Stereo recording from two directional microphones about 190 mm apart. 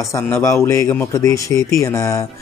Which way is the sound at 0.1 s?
15° left (ahead or behind).